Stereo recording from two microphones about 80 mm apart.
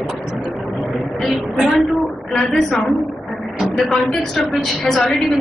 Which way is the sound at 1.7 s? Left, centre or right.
Centre.